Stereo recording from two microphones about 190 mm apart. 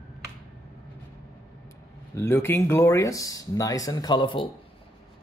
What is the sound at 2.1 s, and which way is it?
Speech, 15° left (ahead or behind).